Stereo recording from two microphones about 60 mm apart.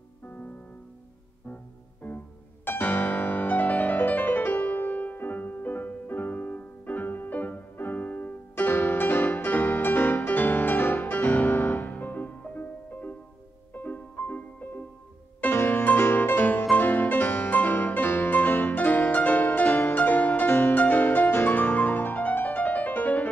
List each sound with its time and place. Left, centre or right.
2.0 s music: left